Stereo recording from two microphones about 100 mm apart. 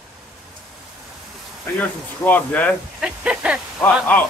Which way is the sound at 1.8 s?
15° left (ahead or behind).